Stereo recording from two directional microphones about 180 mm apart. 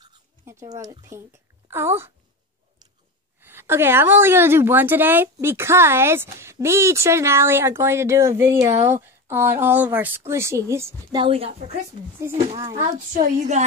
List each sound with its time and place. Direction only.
0.0 s a woman's voice: 20° right (ahead or behind)
3.3 s a woman's voice: 10° right (ahead or behind)
11.1 s a woman's voice: 30° right (ahead or behind)
12.7 s a woman's voice: 40° right (ahead or behind)